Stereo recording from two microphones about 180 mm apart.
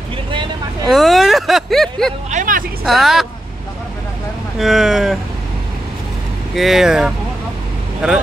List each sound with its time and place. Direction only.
0.8 s a sound: centre (ahead or behind)
2.3 s vehicle: 50° right (ahead or behind)
2.8 s speech: centre (ahead or behind)
4.6 s speech: centre (ahead or behind)
6.5 s speech: centre (ahead or behind)